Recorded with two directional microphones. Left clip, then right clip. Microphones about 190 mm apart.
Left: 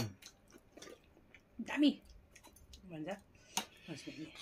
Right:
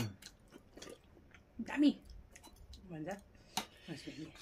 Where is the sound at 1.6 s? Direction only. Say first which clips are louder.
Even; 10° left (ahead or behind).